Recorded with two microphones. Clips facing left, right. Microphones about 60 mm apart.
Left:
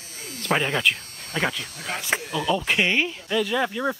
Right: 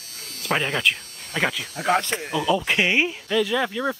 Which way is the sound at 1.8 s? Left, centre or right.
Right.